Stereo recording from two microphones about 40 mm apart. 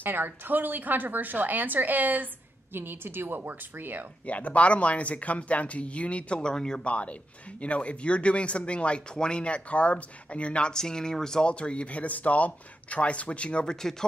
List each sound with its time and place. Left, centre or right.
0.0 s a woman's voice: right
2.7 s a woman's voice: right
4.3 s speech: left
6.4 s speech: centre
6.8 s speech: left
10.7 s speech: centre
11.4 s speech: left
13.7 s speech: centre